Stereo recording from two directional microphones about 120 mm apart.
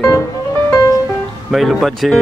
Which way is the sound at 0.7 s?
30° left (ahead or behind).